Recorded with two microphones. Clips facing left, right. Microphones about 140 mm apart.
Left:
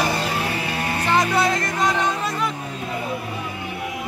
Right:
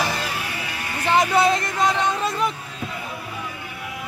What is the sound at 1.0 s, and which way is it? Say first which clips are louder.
Music: right 2 dB; 15° right (ahead or behind).